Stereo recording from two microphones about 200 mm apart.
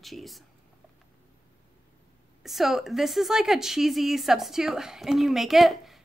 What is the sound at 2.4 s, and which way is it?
Speech, centre (ahead or behind).